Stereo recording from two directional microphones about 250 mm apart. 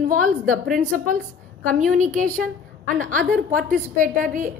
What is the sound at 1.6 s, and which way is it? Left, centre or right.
A woman's voice, right.